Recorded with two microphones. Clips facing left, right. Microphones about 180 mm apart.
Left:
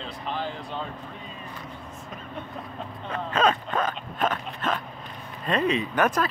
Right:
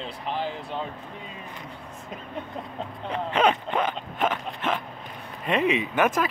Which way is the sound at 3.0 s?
15° right (ahead or behind).